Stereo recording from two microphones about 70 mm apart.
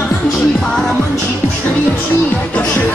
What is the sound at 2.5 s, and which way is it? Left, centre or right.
Speech, centre.